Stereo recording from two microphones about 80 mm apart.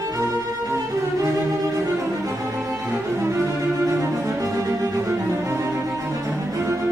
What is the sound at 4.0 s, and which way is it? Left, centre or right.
Cello, right.